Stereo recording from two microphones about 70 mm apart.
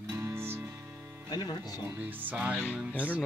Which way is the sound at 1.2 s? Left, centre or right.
Left.